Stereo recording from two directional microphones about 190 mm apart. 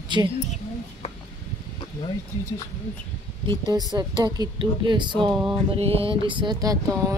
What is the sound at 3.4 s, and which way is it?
A woman's voice, 20° right (ahead or behind).